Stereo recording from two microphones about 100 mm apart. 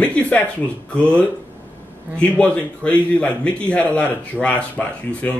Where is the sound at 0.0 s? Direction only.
15° left (ahead or behind).